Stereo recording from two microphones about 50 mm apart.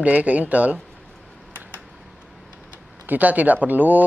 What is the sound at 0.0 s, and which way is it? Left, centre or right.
Speech, right.